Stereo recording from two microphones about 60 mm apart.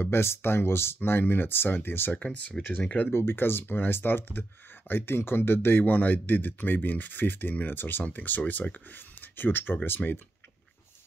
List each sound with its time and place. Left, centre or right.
0.0 s speech: left
2.1 s speech: centre
3.1 s speech: left